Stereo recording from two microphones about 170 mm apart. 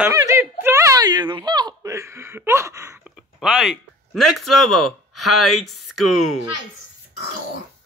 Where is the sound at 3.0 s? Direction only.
5° right (ahead or behind).